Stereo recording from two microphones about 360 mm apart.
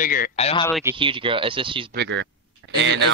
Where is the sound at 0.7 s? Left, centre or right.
Centre.